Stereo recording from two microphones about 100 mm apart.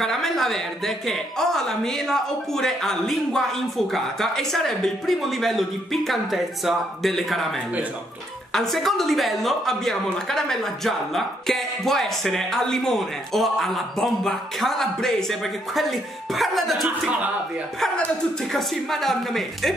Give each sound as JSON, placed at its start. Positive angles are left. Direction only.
{"t": 0.0, "sound": "a man's voice", "side_deg": 5}
{"t": 8.5, "sound": "a man's voice", "side_deg": 5}
{"t": 18.5, "sound": "a man's voice", "side_deg": 0}